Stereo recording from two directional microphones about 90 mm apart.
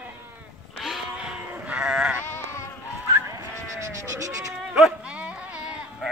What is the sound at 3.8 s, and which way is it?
Sheep, 35° right (ahead or behind).